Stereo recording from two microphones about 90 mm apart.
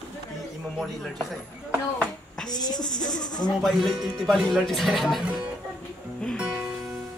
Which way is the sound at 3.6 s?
Centre (ahead or behind).